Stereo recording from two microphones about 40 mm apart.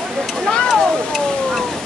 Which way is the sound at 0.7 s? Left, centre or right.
Centre.